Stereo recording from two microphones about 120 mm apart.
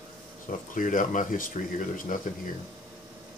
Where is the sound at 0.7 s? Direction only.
90° left.